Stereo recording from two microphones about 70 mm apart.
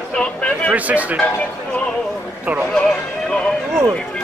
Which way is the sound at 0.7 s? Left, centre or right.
Right.